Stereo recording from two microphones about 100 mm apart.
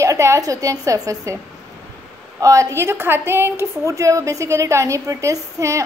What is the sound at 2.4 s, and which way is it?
A woman's voice, 30° right (ahead or behind).